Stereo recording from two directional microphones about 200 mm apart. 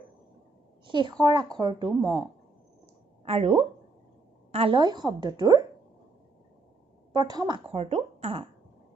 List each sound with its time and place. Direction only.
0.8 s a woman's voice: 25° right (ahead or behind)
3.3 s a woman's voice: 30° right (ahead or behind)
7.1 s speech: 20° right (ahead or behind)